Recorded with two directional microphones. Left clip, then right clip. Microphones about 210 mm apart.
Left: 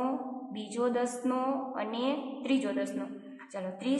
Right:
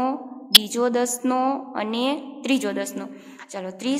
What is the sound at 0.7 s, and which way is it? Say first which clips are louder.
A woman's voice: right 8 dB; 45° right (ahead or behind).